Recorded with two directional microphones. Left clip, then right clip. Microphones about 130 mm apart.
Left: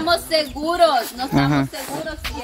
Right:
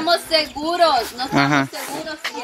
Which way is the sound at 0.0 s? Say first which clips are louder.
Right 1 dB; 20° left (ahead or behind).